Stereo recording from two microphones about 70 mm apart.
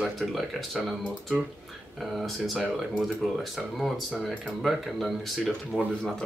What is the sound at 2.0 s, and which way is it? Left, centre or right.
Speech, centre.